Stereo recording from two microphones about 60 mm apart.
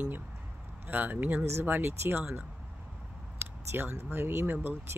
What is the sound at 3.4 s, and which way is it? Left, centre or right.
Speech, right.